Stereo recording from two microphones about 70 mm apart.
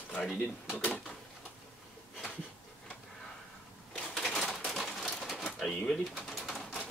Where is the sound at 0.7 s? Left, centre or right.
Centre.